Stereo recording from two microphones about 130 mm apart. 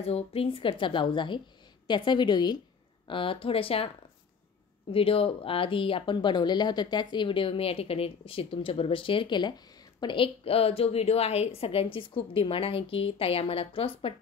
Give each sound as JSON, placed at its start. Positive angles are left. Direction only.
{"t": 0.0, "sound": "a woman's voice", "side_deg": 50}
{"t": 4.9, "sound": "speech", "side_deg": 45}